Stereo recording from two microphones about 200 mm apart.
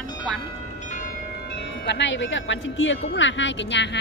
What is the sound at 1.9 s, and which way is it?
A woman's voice, 65° left (ahead or behind).